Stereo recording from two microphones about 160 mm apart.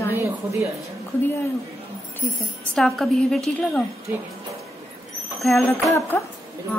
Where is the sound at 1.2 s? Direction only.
15° left (ahead or behind).